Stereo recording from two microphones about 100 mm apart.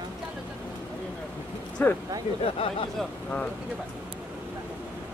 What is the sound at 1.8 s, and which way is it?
Speech, 20° left (ahead or behind).